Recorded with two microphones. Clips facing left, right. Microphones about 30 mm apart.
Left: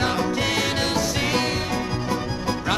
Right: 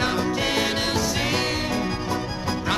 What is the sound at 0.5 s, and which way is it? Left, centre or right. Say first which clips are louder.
Music: even; right.